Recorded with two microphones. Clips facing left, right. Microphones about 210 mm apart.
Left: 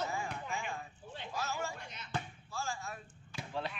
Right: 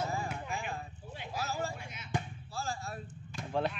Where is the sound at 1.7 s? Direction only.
10° right (ahead or behind).